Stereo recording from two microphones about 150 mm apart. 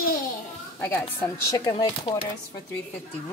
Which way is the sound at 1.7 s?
30° left (ahead or behind).